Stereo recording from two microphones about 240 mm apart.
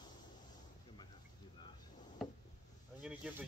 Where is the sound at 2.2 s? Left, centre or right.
Centre.